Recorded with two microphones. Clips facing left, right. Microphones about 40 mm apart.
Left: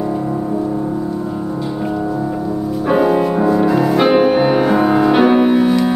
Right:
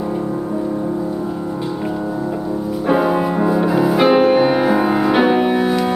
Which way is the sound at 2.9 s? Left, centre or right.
Centre.